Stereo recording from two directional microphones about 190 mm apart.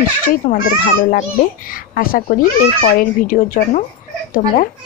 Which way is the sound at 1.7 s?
50° left (ahead or behind).